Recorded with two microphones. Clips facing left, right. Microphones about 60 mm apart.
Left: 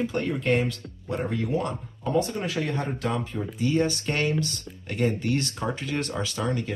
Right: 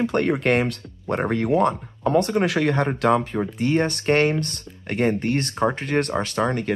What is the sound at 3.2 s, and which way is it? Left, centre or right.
Speech, right.